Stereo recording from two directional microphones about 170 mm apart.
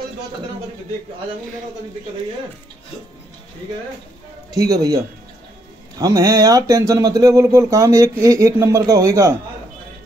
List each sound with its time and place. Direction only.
4.6 s a man's voice: 20° right (ahead or behind)